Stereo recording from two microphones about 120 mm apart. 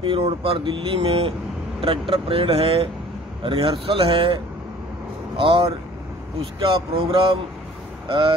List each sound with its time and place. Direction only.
0.0 s speech: 50° right (ahead or behind)
5.4 s speech: 45° right (ahead or behind)